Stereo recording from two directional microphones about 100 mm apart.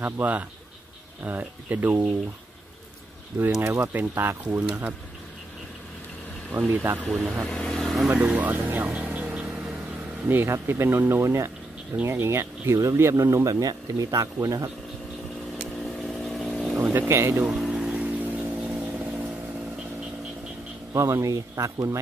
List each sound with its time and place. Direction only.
0.0 s speech: 15° right (ahead or behind)
3.6 s speech: 25° right (ahead or behind)
6.7 s speech: 20° right (ahead or behind)
7.1 s speech: centre (ahead or behind)
7.4 s vehicle: 10° left (ahead or behind)
8.1 s speech: 10° right (ahead or behind)
8.5 s vehicle: 20° right (ahead or behind)
10.2 s speech: 20° right (ahead or behind)
15.8 s vehicle: centre (ahead or behind)
17.1 s speech: 25° right (ahead or behind)
17.5 s a sound: 5° right (ahead or behind)
18.2 s vehicle: 15° right (ahead or behind)
20.9 s speech: 30° right (ahead or behind)